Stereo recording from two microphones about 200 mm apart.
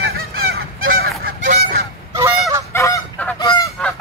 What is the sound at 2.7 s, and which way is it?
Goose, 15° left (ahead or behind).